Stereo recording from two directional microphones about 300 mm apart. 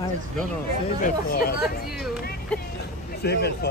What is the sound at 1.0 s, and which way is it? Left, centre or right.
Speech, left.